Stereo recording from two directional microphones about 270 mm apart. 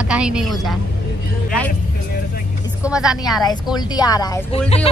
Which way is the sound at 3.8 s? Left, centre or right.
Centre.